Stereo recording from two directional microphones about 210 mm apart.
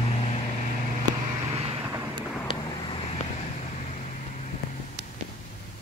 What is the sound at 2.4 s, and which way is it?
Vehicle, 25° left (ahead or behind).